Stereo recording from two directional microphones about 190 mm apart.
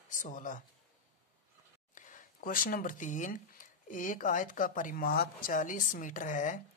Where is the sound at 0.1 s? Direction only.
40° left (ahead or behind).